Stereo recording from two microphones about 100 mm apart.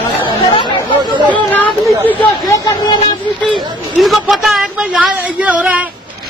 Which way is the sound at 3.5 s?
Centre (ahead or behind).